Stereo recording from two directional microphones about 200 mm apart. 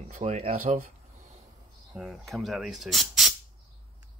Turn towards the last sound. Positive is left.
turn(degrees=0)  # may be behind; listen again after turning